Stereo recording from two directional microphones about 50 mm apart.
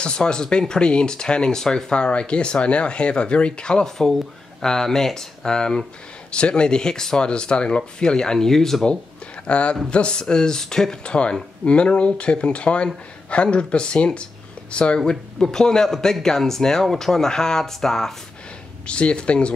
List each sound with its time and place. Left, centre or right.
0.0 s speech: centre
9.5 s speech: left
15.0 s speech: centre
18.9 s speech: left